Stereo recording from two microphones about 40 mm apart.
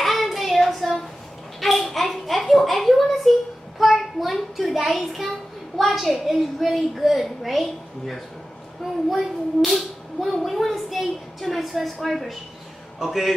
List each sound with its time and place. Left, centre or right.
0.0 s child singing: centre
1.6 s a sound: centre
3.8 s child singing: centre
4.6 s speech: centre